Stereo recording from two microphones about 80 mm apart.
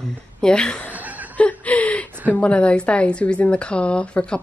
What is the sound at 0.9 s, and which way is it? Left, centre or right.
Chuckle, right.